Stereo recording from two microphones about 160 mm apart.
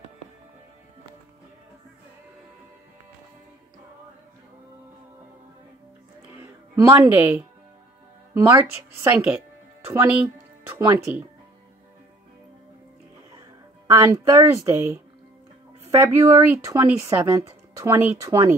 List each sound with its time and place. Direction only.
6.2 s music: 10° right (ahead or behind)
8.5 s speech: 10° right (ahead or behind)
13.8 s speech: 20° right (ahead or behind)
16.0 s speech: 15° right (ahead or behind)